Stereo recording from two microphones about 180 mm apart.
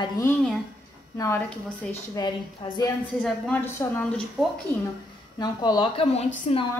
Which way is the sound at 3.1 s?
5° left (ahead or behind).